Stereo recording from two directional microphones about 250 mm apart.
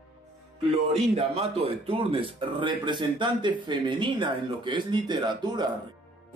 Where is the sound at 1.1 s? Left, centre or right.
Right.